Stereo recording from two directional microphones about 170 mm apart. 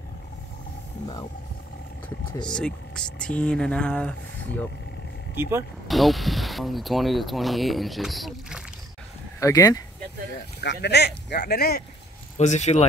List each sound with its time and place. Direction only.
2.4 s speech: 5° left (ahead or behind)
5.3 s speech: 15° right (ahead or behind)
5.9 s speech: centre (ahead or behind)
9.4 s speech: 20° left (ahead or behind)
10.6 s speech: 85° left; by 11.8 s 65° left (ahead or behind)
12.4 s speech: 40° left (ahead or behind)